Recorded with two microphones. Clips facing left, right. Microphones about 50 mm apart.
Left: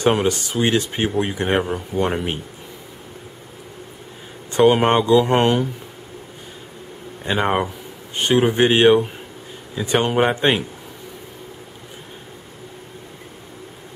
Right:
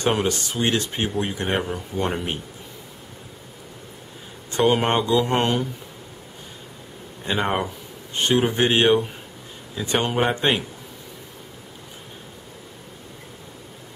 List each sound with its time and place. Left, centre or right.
0.0 s speech: centre
4.5 s speech: centre
7.2 s speech: centre